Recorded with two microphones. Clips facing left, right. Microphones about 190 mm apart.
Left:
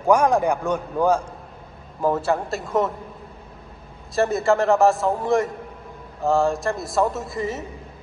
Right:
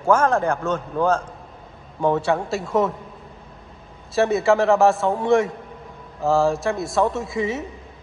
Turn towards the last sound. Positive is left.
turn(degrees=0)  # may be behind; listen again after turning